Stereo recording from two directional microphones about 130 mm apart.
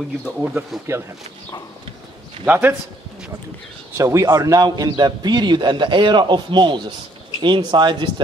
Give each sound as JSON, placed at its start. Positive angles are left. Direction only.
{"t": 0.2, "sound": "speech", "side_deg": -10}
{"t": 2.4, "sound": "speech", "side_deg": -15}
{"t": 3.9, "sound": "a man's voice", "side_deg": -25}